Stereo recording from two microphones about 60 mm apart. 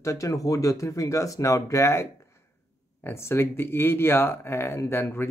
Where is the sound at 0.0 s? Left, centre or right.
Left.